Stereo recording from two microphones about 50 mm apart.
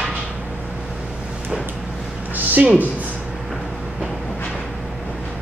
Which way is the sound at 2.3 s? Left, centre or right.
Right.